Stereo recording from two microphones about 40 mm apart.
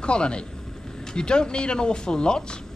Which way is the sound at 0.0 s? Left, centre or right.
Left.